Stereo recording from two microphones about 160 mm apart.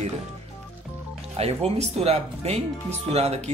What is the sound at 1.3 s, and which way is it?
Speech, 40° right (ahead or behind).